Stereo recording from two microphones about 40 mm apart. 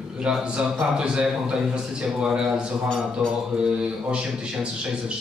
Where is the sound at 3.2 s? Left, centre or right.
Centre.